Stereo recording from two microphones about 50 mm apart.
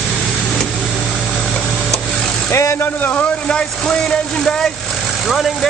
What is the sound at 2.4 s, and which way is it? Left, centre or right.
Speech, left.